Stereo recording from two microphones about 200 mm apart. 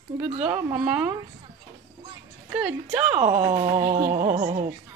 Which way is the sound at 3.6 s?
35° right (ahead or behind).